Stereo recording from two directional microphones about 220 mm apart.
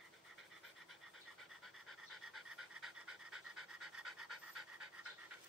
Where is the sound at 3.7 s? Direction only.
90° right.